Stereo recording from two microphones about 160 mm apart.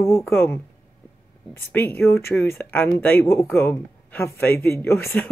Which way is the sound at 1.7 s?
15° left (ahead or behind).